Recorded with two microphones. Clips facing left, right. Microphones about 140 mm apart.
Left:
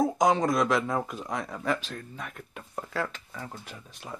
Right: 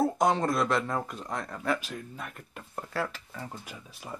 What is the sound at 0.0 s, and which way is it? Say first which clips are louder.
Speech: left 2 dB; 5° right (ahead or behind).